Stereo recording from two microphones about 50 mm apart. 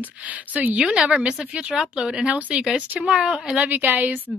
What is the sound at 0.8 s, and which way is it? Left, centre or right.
Speech, centre.